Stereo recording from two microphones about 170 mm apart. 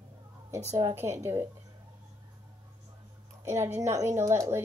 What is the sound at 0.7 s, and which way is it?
Speech, 15° right (ahead or behind).